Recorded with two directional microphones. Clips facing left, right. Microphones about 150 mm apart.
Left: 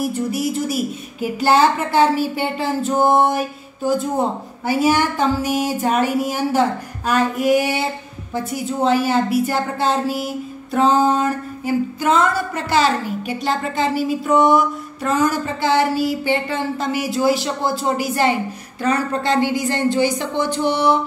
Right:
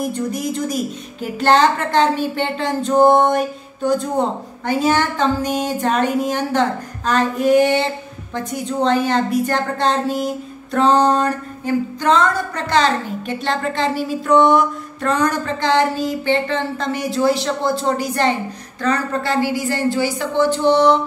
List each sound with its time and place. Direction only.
0.0 s a woman's voice: 5° left (ahead or behind)